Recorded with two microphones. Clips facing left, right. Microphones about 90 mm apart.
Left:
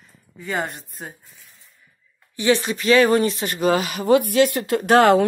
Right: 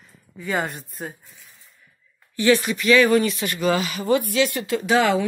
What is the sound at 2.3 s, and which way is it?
Speech, 25° left (ahead or behind).